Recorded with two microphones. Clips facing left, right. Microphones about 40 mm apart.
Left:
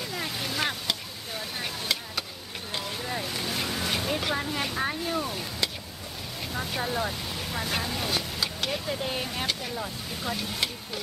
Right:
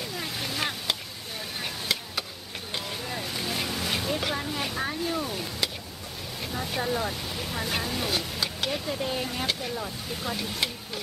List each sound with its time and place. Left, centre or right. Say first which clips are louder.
0.0 s a sound: left 1 dB; centre
1.6 s vehicle: right 1 dB; centre
3.1 s boat: left 1 dB; centre
4.8 s a sound: even; centre
6.4 s vehicle: right 1 dB; centre
9.0 s speech: right 1 dB; centre
9.8 s speech: even; centre